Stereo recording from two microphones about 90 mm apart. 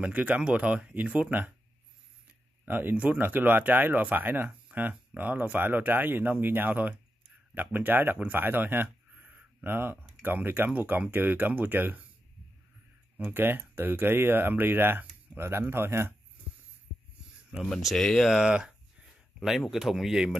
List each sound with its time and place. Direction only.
0.0 s speech: 15° right (ahead or behind)
13.2 s speech: 25° right (ahead or behind)
17.6 s speech: 5° left (ahead or behind)
18.4 s speech: 10° right (ahead or behind)